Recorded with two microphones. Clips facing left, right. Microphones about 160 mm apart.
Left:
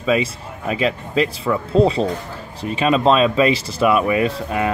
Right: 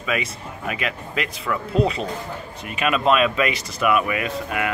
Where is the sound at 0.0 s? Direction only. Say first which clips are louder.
Left 7 dB; 30° left (ahead or behind).